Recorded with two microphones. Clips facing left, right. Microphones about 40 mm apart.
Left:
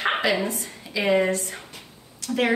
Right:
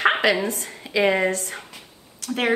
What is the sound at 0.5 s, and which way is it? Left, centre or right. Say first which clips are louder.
A woman's voice: right 2 dB; right.